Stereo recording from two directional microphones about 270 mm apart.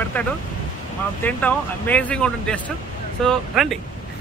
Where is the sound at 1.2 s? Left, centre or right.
Centre.